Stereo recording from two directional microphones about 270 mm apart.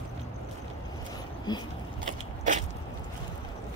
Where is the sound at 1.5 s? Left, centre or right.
Centre.